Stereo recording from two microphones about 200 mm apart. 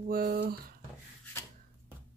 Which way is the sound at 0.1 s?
50° right (ahead or behind).